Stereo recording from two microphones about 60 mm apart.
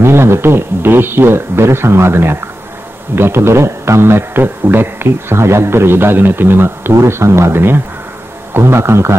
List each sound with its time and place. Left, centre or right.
0.0 s a man's voice: right
6.9 s a man's voice: right